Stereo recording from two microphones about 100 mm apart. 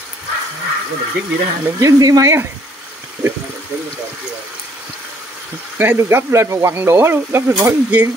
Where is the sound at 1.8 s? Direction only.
35° right (ahead or behind).